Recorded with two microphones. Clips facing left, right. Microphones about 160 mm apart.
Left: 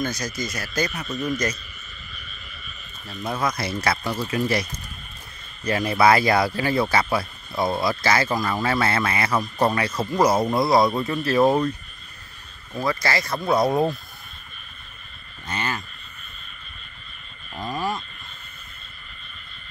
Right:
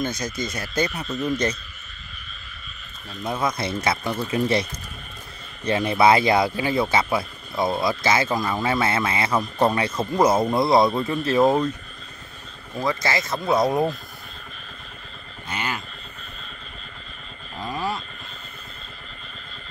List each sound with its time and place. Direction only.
0.0 s speech: 25° right (ahead or behind)
3.3 s speech: 25° right (ahead or behind)
5.7 s speech: 25° right (ahead or behind)
12.7 s speech: 20° right (ahead or behind)
15.4 s speech: 10° right (ahead or behind)
17.6 s a sound: 10° right (ahead or behind)